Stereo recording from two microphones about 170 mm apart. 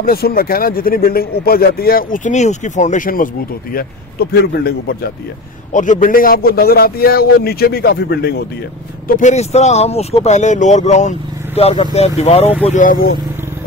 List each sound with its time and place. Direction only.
0.0 s speech: 60° left (ahead or behind)
3.7 s a man's voice: 65° left (ahead or behind)
5.7 s speech: 50° left (ahead or behind); by 8.4 s 70° left (ahead or behind)
9.0 s speech: 50° left (ahead or behind)
12.6 s speech: 50° left (ahead or behind)